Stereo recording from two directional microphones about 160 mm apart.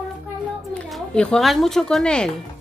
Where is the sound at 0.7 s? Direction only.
5° left (ahead or behind).